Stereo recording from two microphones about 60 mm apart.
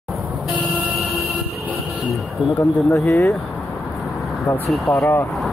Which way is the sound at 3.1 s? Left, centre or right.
Left.